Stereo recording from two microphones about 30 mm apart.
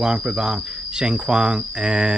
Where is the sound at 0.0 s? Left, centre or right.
Right.